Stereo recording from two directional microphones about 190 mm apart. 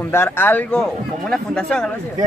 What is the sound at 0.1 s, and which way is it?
A man's voice, 10° left (ahead or behind).